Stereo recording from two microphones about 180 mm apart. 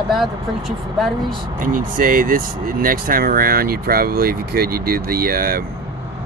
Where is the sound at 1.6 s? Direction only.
50° right (ahead or behind).